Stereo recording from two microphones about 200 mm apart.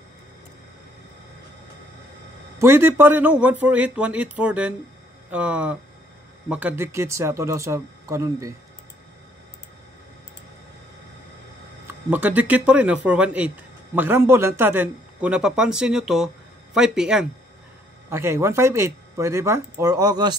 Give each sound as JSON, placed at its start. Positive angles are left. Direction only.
{"t": 2.6, "sound": "speech", "side_deg": -10}
{"t": 11.9, "sound": "speech", "side_deg": -10}